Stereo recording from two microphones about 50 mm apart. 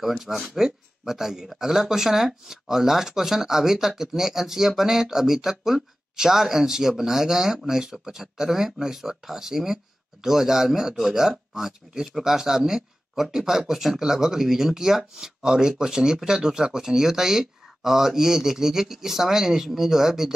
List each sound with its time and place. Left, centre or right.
0.0 s speech: centre